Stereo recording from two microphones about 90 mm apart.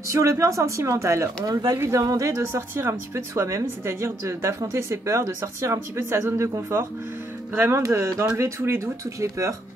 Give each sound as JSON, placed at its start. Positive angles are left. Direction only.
{"t": 0.1, "sound": "speech", "side_deg": -35}